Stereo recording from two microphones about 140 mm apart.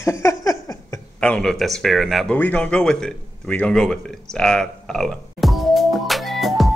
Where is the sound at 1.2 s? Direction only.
5° left (ahead or behind).